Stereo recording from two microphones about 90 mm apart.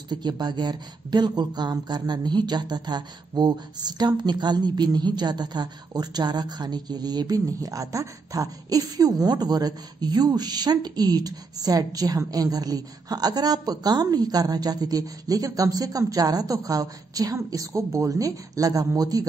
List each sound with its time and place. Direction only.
0.1 s speech: 55° right (ahead or behind)